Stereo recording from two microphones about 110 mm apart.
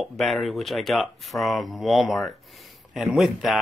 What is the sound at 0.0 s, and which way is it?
Speech, centre (ahead or behind).